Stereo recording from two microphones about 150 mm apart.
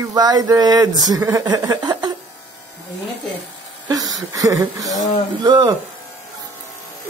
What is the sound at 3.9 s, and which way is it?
Speech, 25° right (ahead or behind).